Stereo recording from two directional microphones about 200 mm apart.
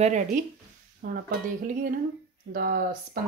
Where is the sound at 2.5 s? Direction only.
50° right (ahead or behind).